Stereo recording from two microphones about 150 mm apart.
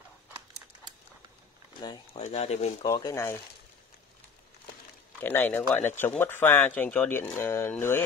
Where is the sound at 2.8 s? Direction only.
25° left (ahead or behind).